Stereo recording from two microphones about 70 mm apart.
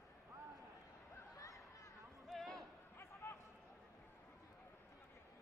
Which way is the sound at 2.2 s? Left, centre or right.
Centre.